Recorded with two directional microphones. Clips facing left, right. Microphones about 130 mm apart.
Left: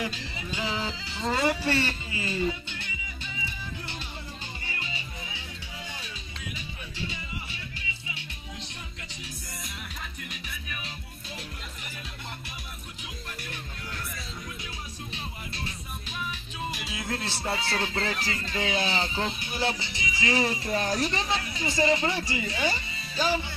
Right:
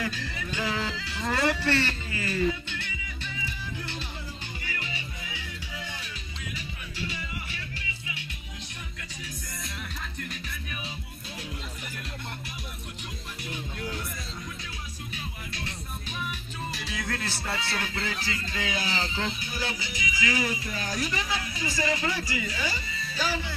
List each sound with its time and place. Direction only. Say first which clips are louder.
0.0 s speech: right 1 dB; 20° left (ahead or behind)
4.6 s music: right 2 dB; 25° left (ahead or behind)
7.0 s music: right 1 dB; 20° left (ahead or behind)
10.3 s music: right 2 dB; 5° left (ahead or behind)
16.9 s speech: right 2 dB; 20° left (ahead or behind)